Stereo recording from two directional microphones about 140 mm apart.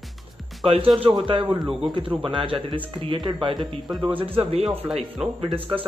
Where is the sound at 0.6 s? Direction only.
40° right (ahead or behind).